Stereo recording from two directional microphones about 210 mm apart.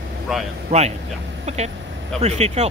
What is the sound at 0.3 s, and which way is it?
Speech, centre (ahead or behind).